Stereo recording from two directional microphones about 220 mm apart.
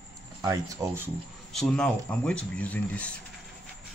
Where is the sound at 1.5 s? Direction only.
5° left (ahead or behind).